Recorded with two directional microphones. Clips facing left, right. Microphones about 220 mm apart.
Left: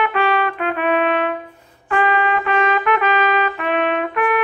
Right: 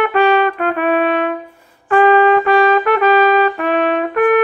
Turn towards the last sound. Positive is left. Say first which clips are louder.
# right 6 dB
turn(degrees=-45)  # may be behind; listen again after turning